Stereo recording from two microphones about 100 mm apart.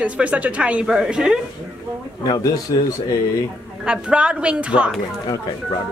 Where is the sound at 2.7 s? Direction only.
60° left (ahead or behind).